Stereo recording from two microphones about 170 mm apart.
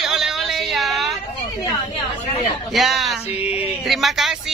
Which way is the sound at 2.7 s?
Centre (ahead or behind).